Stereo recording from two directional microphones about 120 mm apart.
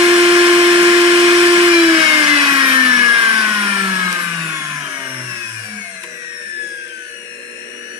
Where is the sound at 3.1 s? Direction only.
35° right (ahead or behind).